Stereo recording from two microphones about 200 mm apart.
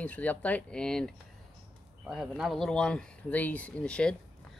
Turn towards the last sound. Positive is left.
turn(degrees=5)  # may be behind; listen again after turning